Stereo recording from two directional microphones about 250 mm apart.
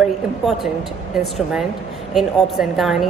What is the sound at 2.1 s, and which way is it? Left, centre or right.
Speech, centre.